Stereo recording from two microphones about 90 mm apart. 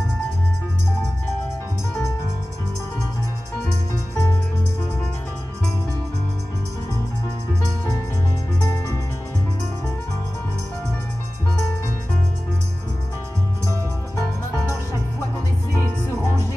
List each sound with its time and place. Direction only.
4.1 s music: 35° left (ahead or behind)
8.6 s music: 40° left (ahead or behind)